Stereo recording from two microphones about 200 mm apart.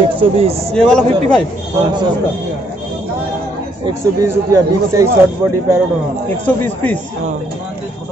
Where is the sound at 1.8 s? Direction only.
20° right (ahead or behind).